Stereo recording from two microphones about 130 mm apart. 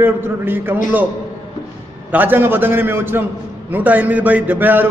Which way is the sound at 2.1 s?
15° right (ahead or behind).